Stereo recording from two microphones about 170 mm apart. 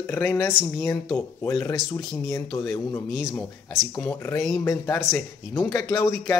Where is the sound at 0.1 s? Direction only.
15° left (ahead or behind).